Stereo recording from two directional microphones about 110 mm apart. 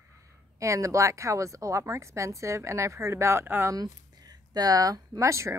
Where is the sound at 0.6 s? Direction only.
30° right (ahead or behind).